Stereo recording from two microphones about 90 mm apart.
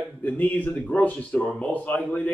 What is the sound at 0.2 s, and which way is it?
A man's voice, 20° left (ahead or behind).